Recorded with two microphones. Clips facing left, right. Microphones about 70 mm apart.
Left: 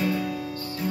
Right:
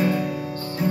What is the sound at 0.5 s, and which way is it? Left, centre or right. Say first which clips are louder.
Music: right 5 dB; right.